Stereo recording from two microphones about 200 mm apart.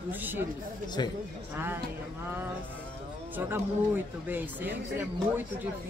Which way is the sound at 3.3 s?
10° right (ahead or behind).